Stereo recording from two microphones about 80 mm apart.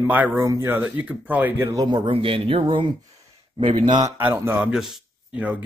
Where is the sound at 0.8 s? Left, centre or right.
Centre.